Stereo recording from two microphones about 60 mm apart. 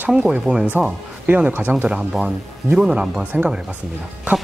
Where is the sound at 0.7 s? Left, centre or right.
Right.